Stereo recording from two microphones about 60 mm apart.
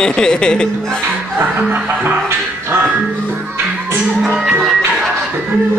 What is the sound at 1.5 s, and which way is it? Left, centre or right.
Music, right.